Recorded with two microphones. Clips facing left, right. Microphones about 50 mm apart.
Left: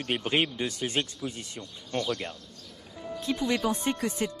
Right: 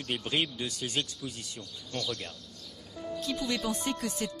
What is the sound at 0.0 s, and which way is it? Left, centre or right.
Speech, left.